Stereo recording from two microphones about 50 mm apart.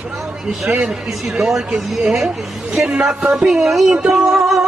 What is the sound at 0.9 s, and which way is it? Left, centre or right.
Speech, centre.